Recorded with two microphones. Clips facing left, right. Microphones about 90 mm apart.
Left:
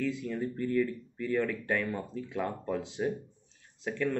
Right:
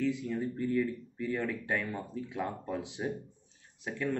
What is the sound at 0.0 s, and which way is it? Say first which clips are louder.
Speech: even; 20° right (ahead or behind).